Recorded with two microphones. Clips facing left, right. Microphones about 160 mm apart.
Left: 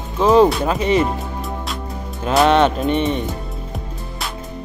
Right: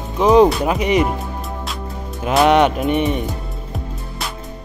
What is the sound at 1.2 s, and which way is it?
Music, centre (ahead or behind).